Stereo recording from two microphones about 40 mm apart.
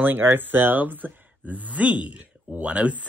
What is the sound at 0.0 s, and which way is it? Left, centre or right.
Speech, right.